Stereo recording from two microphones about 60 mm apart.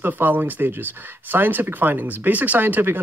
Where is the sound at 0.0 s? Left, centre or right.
Right.